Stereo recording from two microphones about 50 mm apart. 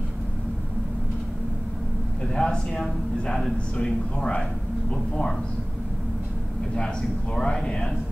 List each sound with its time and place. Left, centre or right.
2.2 s a man's voice: centre
7.3 s a man's voice: centre